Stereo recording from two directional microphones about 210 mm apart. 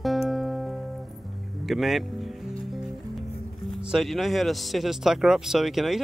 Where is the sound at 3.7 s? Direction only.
Centre (ahead or behind).